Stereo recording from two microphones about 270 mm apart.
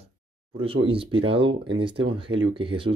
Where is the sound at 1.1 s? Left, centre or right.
Centre.